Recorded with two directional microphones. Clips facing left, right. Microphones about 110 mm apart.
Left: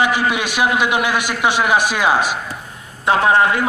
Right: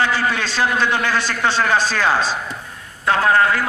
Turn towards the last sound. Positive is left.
turn(degrees=20)  # may be behind; listen again after turning